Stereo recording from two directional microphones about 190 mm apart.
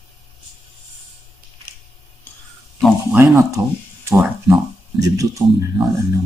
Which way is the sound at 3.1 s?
15° right (ahead or behind).